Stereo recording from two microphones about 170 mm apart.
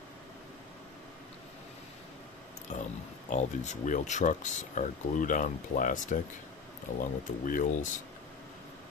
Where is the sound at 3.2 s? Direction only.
45° left (ahead or behind).